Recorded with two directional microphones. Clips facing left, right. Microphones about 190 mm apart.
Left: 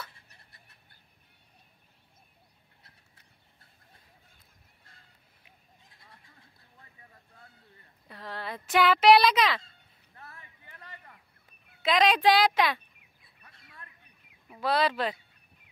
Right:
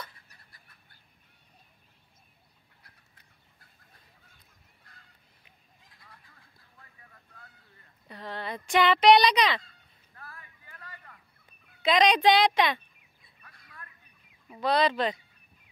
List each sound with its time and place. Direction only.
0.1 s a sound: 25° left (ahead or behind)
5.9 s fowl: 25° left (ahead or behind)
8.1 s speech: centre (ahead or behind)
9.6 s honk: 25° left (ahead or behind)
11.8 s speech: centre (ahead or behind)
13.4 s a sound: 25° left (ahead or behind)
14.5 s speech: 5° left (ahead or behind)